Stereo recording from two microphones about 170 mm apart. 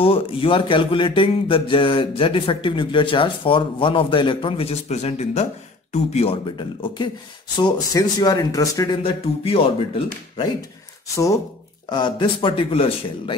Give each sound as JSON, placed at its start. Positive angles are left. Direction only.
{"t": 0.0, "sound": "speech", "side_deg": 30}
{"t": 11.9, "sound": "speech", "side_deg": 25}